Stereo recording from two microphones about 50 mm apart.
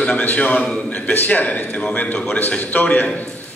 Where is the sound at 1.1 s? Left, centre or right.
Left.